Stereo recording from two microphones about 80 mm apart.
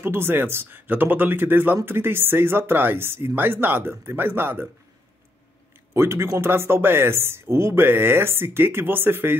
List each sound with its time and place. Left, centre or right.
0.0 s speech: right
5.9 s speech: right